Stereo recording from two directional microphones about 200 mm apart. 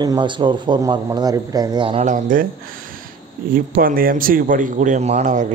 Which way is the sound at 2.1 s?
45° right (ahead or behind).